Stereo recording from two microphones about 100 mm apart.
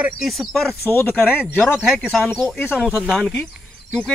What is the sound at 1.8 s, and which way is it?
Speech, 5° right (ahead or behind).